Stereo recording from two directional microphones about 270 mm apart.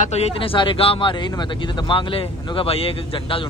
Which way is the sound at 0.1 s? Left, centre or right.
Left.